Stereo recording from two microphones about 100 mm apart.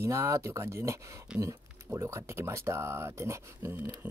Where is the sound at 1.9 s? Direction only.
30° right (ahead or behind).